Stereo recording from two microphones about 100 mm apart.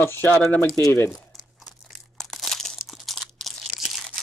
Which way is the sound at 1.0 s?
Centre (ahead or behind).